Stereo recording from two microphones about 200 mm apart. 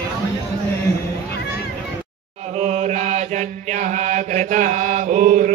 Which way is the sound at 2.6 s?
35° right (ahead or behind).